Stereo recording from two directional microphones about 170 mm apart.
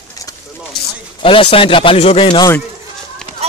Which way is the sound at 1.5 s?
30° left (ahead or behind).